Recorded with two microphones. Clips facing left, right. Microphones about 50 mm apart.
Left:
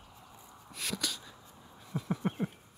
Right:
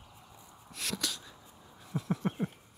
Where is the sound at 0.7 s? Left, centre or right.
Centre.